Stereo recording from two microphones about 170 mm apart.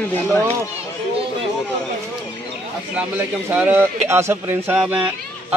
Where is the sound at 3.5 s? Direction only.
10° right (ahead or behind).